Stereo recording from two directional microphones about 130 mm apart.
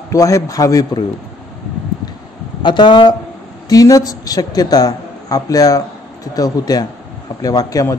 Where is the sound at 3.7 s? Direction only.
25° left (ahead or behind).